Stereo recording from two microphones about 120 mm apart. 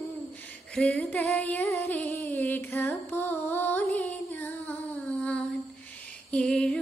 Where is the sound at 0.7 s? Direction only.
10° left (ahead or behind).